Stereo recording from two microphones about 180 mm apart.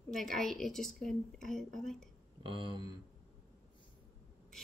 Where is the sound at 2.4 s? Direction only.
25° right (ahead or behind).